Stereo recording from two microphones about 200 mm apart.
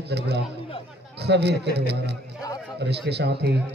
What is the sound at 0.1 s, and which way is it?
Mantra, 55° right (ahead or behind).